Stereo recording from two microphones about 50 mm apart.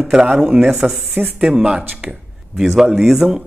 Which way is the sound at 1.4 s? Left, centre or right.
Centre.